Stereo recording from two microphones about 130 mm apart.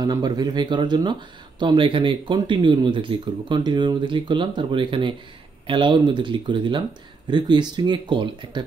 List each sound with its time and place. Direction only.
0.0 s speech: 30° right (ahead or behind)